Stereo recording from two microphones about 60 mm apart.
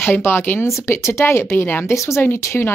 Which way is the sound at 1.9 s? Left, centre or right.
Left.